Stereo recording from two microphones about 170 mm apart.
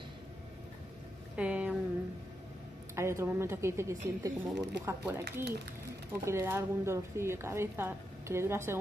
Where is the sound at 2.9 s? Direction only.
15° right (ahead or behind).